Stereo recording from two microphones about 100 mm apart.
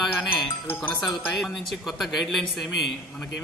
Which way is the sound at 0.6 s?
20° left (ahead or behind).